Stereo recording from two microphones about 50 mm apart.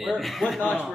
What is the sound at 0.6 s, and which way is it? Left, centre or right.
Speech, centre.